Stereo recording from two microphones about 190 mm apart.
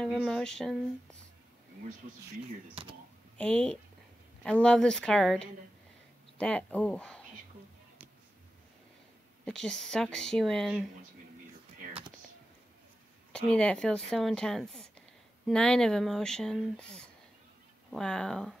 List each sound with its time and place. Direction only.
0.0 s speech: centre (ahead or behind)
2.7 s speech: 30° right (ahead or behind)
3.3 s speech: 5° left (ahead or behind)
9.4 s speech: 5° left (ahead or behind)
13.3 s speech: 5° left (ahead or behind)